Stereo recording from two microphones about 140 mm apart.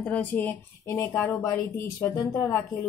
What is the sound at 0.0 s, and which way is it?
A woman's voice, 10° left (ahead or behind).